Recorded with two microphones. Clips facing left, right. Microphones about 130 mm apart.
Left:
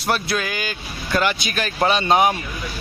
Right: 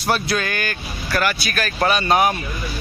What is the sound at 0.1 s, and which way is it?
Speech, 5° left (ahead or behind).